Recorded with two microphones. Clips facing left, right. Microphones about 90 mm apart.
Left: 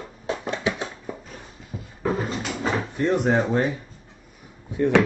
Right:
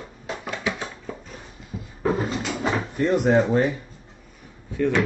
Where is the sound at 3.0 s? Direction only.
Centre (ahead or behind).